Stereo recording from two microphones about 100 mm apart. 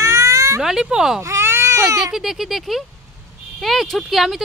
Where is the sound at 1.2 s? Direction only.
30° right (ahead or behind).